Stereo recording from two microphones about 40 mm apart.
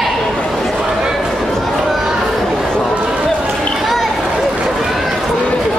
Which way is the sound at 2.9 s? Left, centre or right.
Right.